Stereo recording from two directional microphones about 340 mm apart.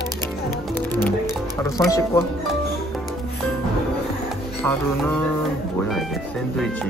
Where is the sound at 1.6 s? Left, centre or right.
Centre.